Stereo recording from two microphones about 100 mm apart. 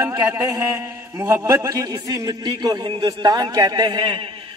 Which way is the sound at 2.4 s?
50° right (ahead or behind).